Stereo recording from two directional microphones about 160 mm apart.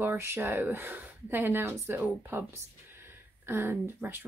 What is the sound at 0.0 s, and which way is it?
Speech, 15° right (ahead or behind).